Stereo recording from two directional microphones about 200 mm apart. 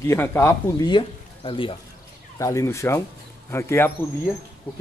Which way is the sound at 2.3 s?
15° left (ahead or behind).